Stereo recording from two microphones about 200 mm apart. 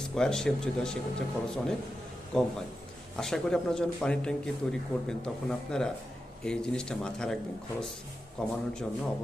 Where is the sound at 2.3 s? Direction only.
5° left (ahead or behind).